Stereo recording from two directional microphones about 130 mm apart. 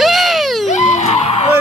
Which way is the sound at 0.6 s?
65° left (ahead or behind).